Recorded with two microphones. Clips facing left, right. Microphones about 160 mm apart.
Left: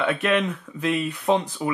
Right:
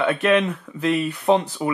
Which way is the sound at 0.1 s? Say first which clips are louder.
Right 4 dB; centre (ahead or behind).